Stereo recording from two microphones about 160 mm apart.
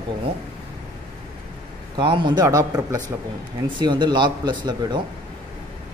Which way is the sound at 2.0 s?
30° right (ahead or behind).